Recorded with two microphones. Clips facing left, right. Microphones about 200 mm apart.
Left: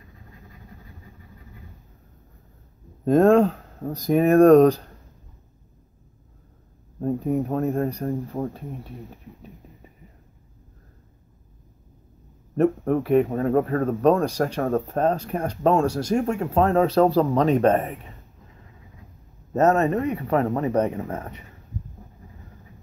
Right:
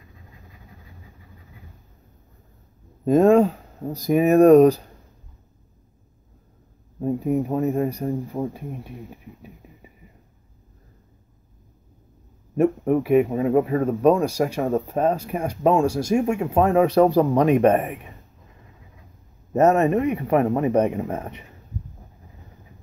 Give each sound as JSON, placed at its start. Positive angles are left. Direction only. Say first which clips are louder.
{"t": 3.1, "sound": "speech", "louder": "right 1 dB", "side_deg": -5}
{"t": 7.0, "sound": "speech", "louder": "right 1 dB", "side_deg": -5}
{"t": 12.5, "sound": "speech", "louder": "right 1 dB", "side_deg": -10}
{"t": 19.5, "sound": "speech", "louder": "right 2 dB", "side_deg": -15}